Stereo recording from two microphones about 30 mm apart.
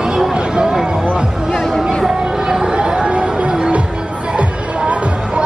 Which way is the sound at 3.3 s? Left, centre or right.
Right.